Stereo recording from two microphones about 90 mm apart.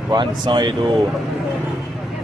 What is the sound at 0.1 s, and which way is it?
Speech, 60° right (ahead or behind).